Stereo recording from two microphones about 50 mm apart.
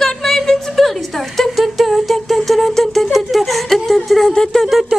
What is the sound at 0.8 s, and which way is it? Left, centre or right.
Humming, centre.